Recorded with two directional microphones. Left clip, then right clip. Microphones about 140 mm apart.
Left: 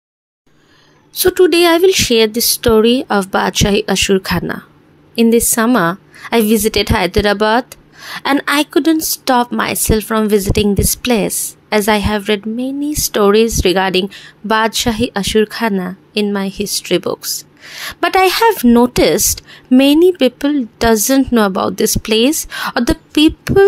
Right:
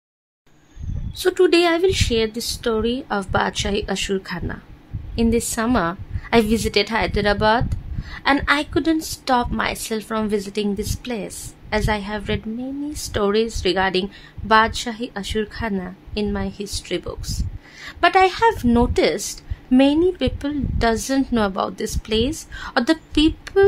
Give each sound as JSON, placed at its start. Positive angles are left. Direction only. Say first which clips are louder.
{"t": 1.1, "sound": "a woman's voice", "louder": "left 6 dB", "side_deg": 35}